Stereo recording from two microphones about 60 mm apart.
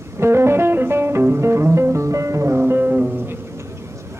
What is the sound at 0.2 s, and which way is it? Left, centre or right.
Music, right.